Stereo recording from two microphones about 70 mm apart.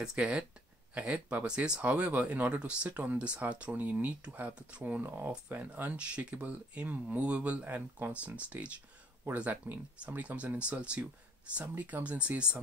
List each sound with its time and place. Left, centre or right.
0.0 s speech: centre
5.0 s speech: right
5.5 s speech: centre